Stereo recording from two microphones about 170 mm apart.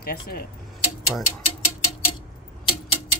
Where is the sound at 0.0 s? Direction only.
65° left (ahead or behind).